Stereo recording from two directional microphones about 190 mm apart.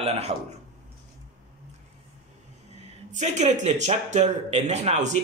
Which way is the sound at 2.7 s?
40° right (ahead or behind).